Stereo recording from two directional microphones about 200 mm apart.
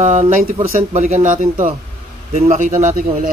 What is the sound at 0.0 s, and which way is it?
Speech, 35° right (ahead or behind).